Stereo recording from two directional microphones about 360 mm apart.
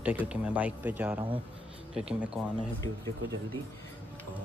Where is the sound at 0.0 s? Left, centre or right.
Centre.